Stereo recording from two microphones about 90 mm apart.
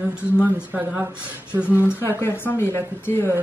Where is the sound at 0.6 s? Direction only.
20° right (ahead or behind).